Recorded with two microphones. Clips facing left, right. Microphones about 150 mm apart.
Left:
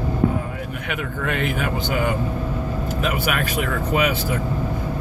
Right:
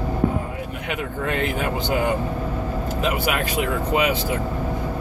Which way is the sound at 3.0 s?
25° right (ahead or behind).